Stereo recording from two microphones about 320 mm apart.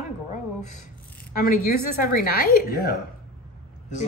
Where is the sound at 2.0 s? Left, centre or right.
Left.